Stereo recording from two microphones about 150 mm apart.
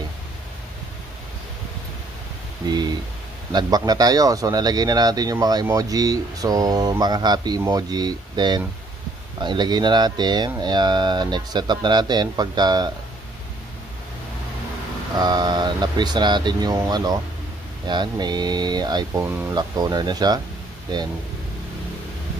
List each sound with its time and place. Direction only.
2.7 s speech: 30° right (ahead or behind)
15.1 s speech: 30° right (ahead or behind)